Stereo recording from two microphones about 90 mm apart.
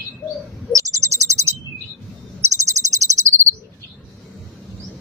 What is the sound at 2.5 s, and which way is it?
Cricket, 35° right (ahead or behind).